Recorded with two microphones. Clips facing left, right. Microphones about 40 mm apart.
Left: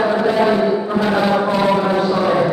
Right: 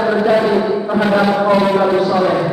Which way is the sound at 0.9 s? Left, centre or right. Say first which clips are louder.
Right 3 dB; centre.